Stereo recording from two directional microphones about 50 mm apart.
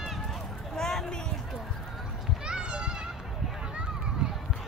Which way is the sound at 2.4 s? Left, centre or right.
Centre.